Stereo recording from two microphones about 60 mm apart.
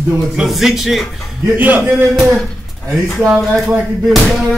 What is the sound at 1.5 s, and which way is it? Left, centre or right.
Speech, right.